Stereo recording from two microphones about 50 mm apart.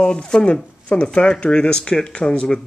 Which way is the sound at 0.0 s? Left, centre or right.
Centre.